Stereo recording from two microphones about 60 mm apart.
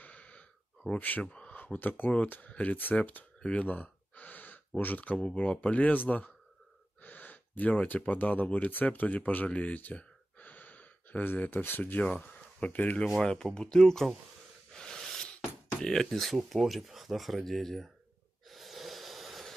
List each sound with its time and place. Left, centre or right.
0.0 s sigh: left
1.3 s speech: left; by 14.1 s centre
14.7 s gasp: centre
15.8 s speech: centre
18.5 s snort: centre